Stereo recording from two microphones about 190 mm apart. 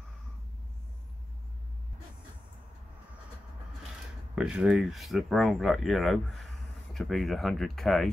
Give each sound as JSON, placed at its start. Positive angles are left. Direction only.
{"t": 4.4, "sound": "speech", "side_deg": -5}